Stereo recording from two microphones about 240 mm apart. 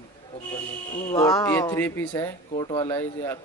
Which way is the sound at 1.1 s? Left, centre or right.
Centre.